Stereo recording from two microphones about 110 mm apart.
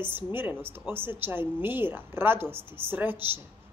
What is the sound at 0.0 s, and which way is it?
A woman's voice, 20° right (ahead or behind).